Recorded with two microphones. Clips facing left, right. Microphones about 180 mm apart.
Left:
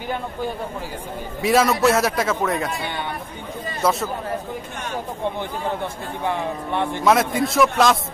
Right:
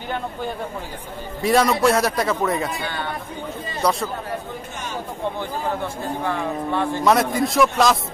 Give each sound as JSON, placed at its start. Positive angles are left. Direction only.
{"t": 1.4, "sound": "a man's voice", "side_deg": 0}
{"t": 2.8, "sound": "speech", "side_deg": 20}
{"t": 3.8, "sound": "a man's voice", "side_deg": 5}
{"t": 6.2, "sound": "speech", "side_deg": 20}
{"t": 7.1, "sound": "a man's voice", "side_deg": 0}